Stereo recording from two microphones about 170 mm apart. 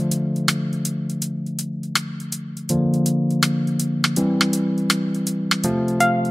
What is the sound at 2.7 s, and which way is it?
Music, centre (ahead or behind).